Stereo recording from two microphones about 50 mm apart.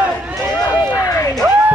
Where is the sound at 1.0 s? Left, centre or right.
Left.